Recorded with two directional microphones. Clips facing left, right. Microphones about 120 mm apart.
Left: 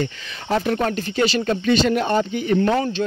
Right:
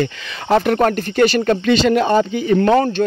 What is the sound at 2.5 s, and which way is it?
Speech, 60° right (ahead or behind).